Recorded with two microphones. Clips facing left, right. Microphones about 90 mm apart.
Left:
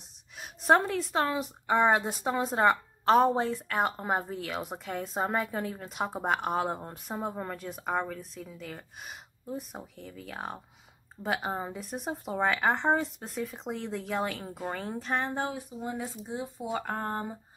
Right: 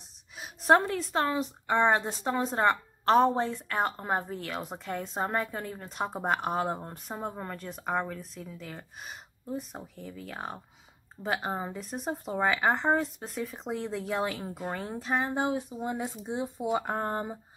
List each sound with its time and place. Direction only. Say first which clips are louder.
0.4 s a woman's voice: right 1 dB; centre (ahead or behind)
15.3 s speech: right 4 dB; 20° right (ahead or behind)